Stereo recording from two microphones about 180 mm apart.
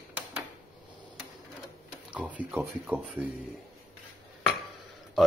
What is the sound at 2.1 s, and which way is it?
Speech, 5° right (ahead or behind).